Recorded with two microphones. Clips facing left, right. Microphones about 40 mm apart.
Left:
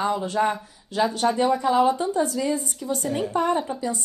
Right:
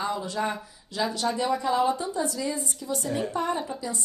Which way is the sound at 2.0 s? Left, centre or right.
Left.